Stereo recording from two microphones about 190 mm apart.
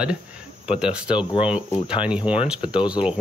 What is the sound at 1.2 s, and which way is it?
Speech, 25° left (ahead or behind).